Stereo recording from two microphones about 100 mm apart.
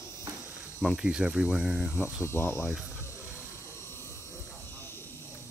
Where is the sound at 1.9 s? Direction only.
25° left (ahead or behind).